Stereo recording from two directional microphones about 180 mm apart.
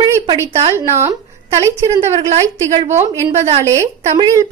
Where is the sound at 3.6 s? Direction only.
15° right (ahead or behind).